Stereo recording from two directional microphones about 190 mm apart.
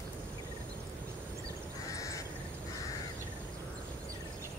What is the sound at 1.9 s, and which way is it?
Crow, 15° left (ahead or behind).